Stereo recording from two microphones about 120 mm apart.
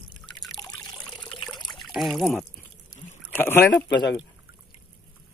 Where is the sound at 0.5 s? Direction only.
30° left (ahead or behind).